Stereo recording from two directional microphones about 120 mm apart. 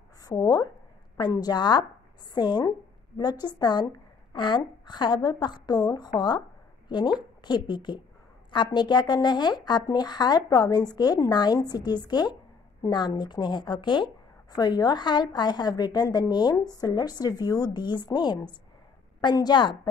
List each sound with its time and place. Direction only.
0.2 s speech: 30° left (ahead or behind)